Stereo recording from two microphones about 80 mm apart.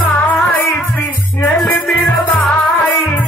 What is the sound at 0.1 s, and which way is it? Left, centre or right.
Music, left.